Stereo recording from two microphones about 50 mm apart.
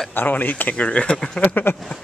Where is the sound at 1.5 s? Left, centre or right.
Left.